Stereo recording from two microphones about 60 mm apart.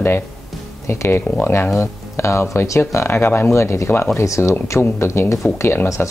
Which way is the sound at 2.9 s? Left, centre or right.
Left.